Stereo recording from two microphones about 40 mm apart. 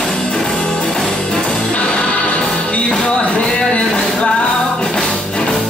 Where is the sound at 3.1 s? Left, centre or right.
Left.